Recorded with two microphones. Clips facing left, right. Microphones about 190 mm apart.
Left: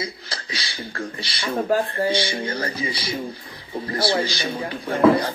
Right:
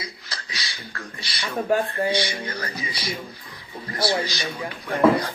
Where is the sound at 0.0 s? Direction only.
30° left (ahead or behind).